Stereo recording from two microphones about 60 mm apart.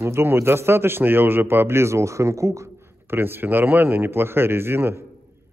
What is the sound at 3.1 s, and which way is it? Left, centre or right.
Speech, right.